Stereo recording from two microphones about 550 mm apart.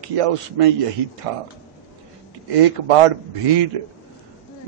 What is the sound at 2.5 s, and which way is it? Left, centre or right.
A man's voice, right.